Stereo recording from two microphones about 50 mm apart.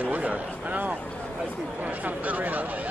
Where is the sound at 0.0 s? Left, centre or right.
Right.